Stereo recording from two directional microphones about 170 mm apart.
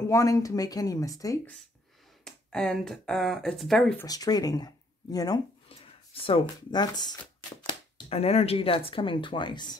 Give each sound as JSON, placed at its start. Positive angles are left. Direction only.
{"t": 0.0, "sound": "speech", "side_deg": 20}
{"t": 2.2, "sound": "speech", "side_deg": 5}
{"t": 4.0, "sound": "speech", "side_deg": 20}
{"t": 5.7, "sound": "a sound", "side_deg": 35}
{"t": 6.7, "sound": "speech", "side_deg": 25}
{"t": 7.6, "sound": "speech", "side_deg": 35}